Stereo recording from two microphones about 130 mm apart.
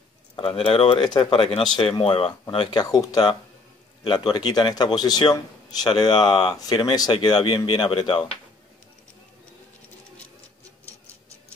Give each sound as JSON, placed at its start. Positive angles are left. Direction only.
{"t": 0.4, "sound": "a man's voice", "side_deg": 45}